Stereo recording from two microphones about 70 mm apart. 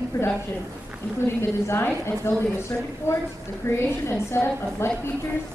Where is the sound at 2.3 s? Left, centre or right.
Left.